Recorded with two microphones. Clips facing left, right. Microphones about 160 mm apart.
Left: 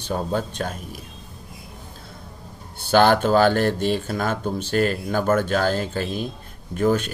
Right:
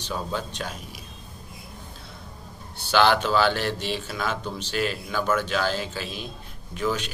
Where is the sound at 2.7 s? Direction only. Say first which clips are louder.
Left 4 dB; 50° left (ahead or behind).